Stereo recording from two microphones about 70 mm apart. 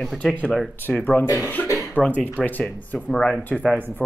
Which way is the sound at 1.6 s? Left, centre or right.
Left.